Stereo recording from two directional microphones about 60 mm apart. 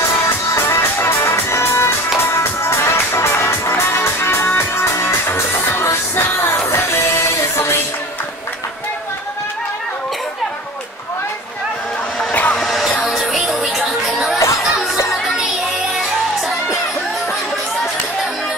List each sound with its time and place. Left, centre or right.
0.7 s music: left
12.3 s music: left
12.5 s music: centre
15.9 s music: centre